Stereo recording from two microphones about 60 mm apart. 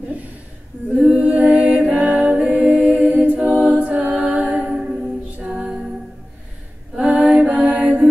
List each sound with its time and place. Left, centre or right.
0.9 s a capella: right; by 5.9 s centre
7.0 s female singing: centre
7.4 s mantra: centre
7.7 s mantra: right